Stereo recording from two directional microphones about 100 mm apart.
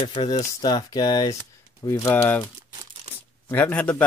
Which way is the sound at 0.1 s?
50° left (ahead or behind).